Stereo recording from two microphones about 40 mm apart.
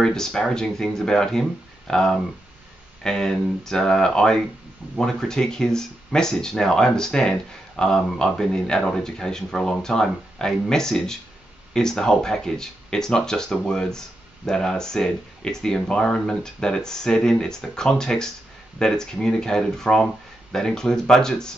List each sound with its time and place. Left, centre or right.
0.0 s speech: centre